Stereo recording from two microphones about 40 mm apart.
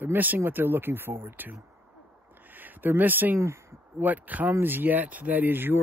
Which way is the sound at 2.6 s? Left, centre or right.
Right.